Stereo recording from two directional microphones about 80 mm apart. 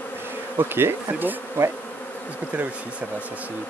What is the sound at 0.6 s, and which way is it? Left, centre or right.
Bee, right.